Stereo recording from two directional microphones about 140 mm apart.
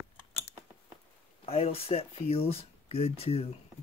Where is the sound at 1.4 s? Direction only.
45° left (ahead or behind).